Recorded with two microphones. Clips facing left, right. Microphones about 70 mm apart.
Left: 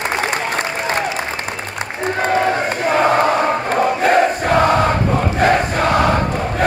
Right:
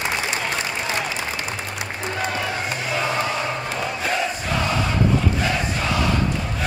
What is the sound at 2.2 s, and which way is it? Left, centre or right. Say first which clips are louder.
Crowd: left 10 dB; left.